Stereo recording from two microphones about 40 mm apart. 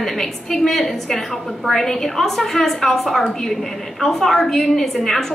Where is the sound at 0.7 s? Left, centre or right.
Centre.